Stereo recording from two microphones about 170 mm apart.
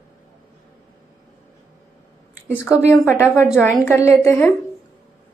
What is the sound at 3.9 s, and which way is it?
Speech, 15° left (ahead or behind).